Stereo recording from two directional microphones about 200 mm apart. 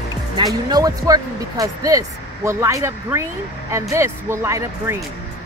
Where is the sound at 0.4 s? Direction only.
20° right (ahead or behind).